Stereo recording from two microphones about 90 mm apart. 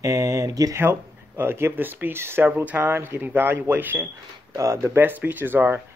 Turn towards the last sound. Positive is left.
turn(degrees=-20)  # may be behind; listen again after turning